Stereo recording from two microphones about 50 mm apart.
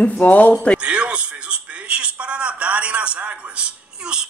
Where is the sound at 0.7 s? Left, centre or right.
Right.